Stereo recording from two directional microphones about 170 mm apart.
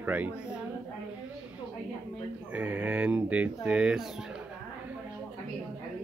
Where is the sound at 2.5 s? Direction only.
10° right (ahead or behind).